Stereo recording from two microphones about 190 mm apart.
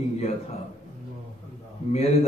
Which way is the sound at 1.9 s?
35° left (ahead or behind).